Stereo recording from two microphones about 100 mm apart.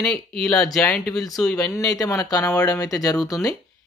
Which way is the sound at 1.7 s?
35° left (ahead or behind).